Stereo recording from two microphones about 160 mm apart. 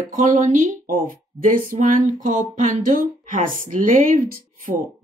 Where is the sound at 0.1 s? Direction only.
55° right (ahead or behind).